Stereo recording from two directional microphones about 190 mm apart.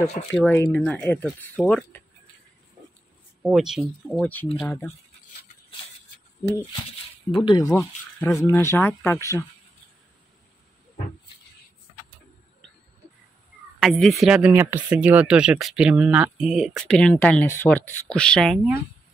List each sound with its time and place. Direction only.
0.3 s speech: 10° left (ahead or behind)
3.4 s speech: centre (ahead or behind)
7.2 s speech: 25° left (ahead or behind)
7.7 s speech: 10° left (ahead or behind)
13.7 s speech: centre (ahead or behind)